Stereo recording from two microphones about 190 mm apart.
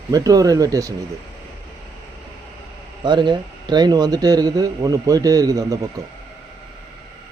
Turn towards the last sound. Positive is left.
turn(degrees=-20)  # may be behind; listen again after turning